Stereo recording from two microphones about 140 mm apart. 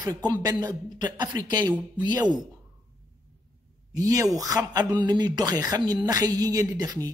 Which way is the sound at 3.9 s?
25° right (ahead or behind).